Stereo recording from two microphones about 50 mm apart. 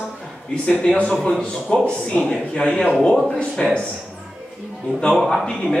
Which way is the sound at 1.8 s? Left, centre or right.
Centre.